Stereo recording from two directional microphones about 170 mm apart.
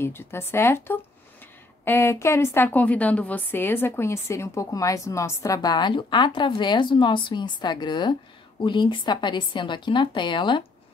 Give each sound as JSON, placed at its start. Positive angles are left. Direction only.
{"t": 0.0, "sound": "a woman's voice", "side_deg": 15}